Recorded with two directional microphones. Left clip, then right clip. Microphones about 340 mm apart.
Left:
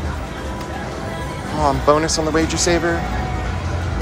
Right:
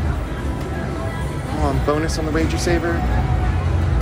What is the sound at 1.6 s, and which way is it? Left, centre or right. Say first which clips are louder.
Speech: left 6 dB; centre.